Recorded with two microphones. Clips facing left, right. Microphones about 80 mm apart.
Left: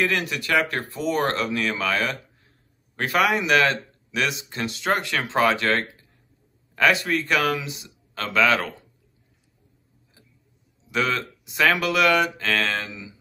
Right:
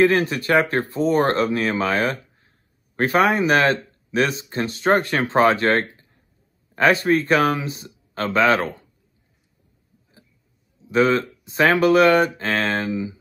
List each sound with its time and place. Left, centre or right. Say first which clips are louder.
0.0 s speech: right 7 dB; right
10.9 s speech: right 7 dB; right